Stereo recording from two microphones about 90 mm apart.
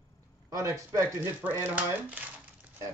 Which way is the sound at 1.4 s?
20° right (ahead or behind).